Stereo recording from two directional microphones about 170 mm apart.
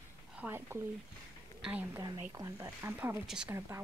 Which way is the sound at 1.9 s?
25° right (ahead or behind).